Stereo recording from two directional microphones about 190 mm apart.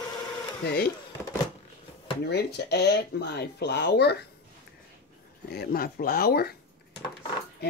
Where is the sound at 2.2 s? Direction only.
60° left (ahead or behind).